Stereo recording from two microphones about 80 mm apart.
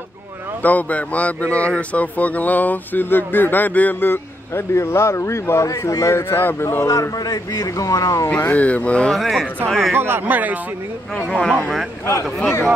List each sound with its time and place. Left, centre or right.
0.6 s speech: centre
7.0 s a man's voice: left
8.4 s speech: left
9.2 s speech: centre
9.9 s speech: right
11.1 s speech: centre